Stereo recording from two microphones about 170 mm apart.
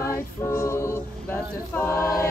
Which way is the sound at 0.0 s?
15° left (ahead or behind).